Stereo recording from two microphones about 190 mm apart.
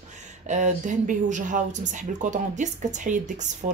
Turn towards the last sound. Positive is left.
turn(degrees=-40)  # may be behind; listen again after turning